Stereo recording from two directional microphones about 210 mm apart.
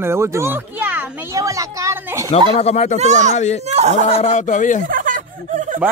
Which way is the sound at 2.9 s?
35° right (ahead or behind).